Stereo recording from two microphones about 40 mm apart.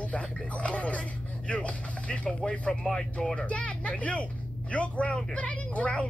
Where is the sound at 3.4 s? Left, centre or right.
Left.